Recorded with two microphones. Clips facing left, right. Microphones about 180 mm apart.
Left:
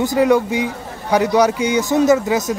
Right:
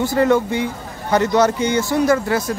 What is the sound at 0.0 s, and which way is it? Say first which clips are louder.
Speech: left 1 dB; 15° left (ahead or behind).